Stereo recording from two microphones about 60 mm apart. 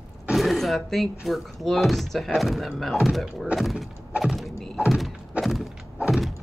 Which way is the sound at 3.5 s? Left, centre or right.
Centre.